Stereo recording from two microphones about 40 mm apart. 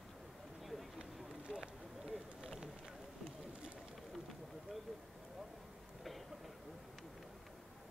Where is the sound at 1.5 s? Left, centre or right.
Centre.